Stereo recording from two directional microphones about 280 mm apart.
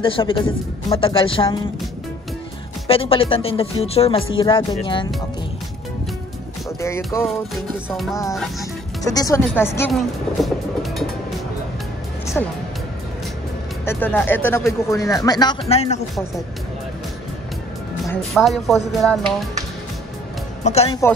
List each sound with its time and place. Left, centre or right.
0.0 s speech: centre
2.9 s speech: centre
6.8 s music: centre
9.0 s speech: centre
12.4 s music: centre
13.8 s speech: centre
18.0 s music: centre
20.6 s speech: left